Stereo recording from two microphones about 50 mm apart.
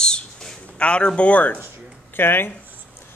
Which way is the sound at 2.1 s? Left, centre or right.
Left.